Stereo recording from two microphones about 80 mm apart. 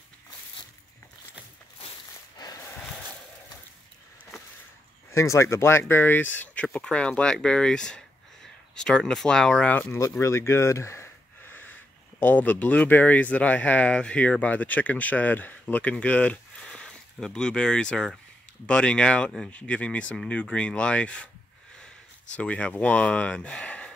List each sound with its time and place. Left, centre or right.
2.3 s a sound: left
5.1 s speech: left; by 9.8 s centre
10.1 s speech: left
12.2 s speech: left
22.3 s speech: centre